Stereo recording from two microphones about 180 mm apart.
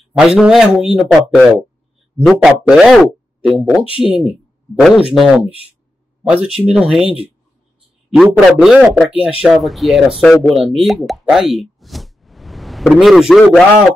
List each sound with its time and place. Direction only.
0.2 s a man's voice: centre (ahead or behind)